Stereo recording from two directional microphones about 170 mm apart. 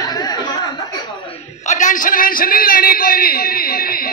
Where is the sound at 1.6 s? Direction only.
45° left (ahead or behind).